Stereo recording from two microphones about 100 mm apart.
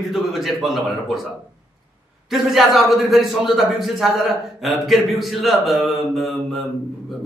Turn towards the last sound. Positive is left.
turn(degrees=0)  # may be behind; listen again after turning